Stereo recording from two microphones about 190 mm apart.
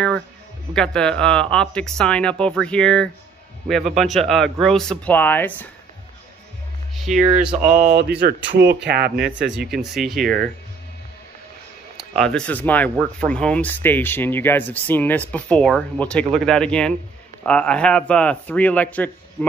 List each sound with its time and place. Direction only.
0.7 s speech: 5° left (ahead or behind)
7.0 s speech: centre (ahead or behind)
7.9 s speech: 60° right (ahead or behind)
9.5 s speech: 5° right (ahead or behind)
12.2 s speech: 5° left (ahead or behind)